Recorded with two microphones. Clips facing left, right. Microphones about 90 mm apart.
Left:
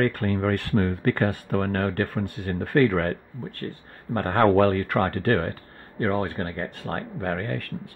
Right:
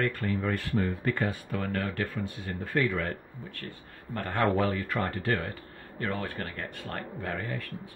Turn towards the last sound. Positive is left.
turn(degrees=55)  # may be behind; listen again after turning